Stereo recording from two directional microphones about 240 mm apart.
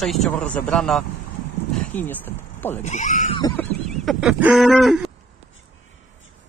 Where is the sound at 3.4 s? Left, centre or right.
Centre.